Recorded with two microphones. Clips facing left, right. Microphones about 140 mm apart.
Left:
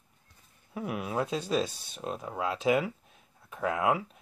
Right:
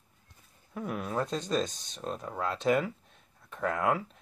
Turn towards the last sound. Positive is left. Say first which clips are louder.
# left 1 dB
turn(degrees=10)  # may be behind; listen again after turning